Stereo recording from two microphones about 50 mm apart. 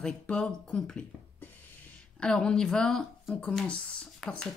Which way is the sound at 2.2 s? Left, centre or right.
Centre.